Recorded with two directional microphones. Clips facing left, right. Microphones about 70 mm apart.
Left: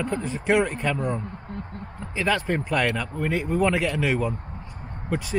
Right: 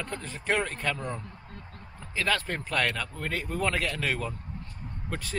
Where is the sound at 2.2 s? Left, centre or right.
Centre.